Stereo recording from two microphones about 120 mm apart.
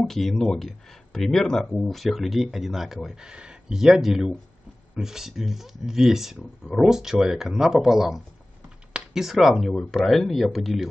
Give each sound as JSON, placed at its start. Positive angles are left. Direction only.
{"t": 0.0, "sound": "speech", "side_deg": 5}